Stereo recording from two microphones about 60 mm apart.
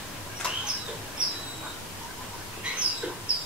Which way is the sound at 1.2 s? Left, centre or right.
Centre.